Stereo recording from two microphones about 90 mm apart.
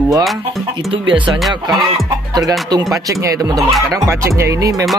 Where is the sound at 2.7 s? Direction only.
40° right (ahead or behind).